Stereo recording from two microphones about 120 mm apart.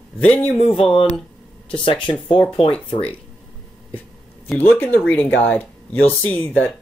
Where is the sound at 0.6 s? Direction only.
50° left (ahead or behind).